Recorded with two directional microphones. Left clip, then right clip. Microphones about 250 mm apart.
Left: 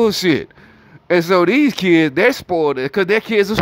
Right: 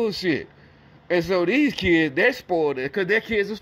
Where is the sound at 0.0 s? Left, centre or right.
Centre.